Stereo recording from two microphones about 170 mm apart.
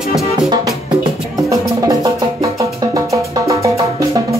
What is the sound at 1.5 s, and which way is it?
Music, 20° right (ahead or behind).